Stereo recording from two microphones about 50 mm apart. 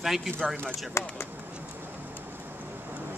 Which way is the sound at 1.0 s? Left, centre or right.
Left.